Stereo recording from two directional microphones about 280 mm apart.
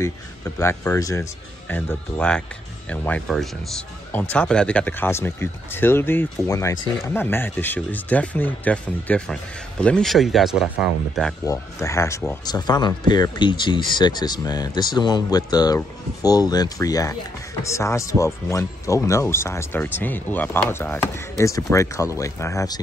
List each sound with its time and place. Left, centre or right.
0.6 s speech: centre
11.4 s speech: centre